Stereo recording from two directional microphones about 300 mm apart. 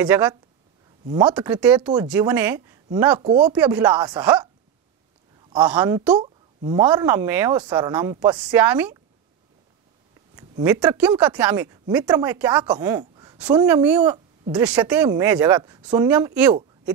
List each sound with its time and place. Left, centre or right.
0.0 s speech: centre
3.5 s speech: centre
5.7 s speech: centre
10.3 s speech: centre
13.0 s a sound: centre
13.8 s speech: centre